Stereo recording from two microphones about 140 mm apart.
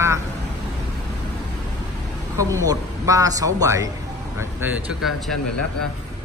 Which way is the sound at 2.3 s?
25° right (ahead or behind).